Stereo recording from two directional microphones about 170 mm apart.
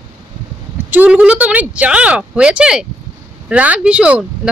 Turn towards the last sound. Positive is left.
turn(degrees=-5)  # may be behind; listen again after turning